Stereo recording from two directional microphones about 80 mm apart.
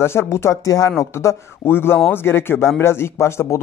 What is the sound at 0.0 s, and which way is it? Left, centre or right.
Speech, left.